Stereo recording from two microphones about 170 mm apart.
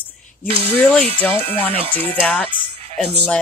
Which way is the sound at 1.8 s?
35° right (ahead or behind).